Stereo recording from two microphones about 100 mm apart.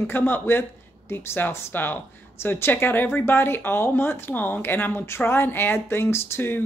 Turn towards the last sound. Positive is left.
turn(degrees=25)  # may be behind; listen again after turning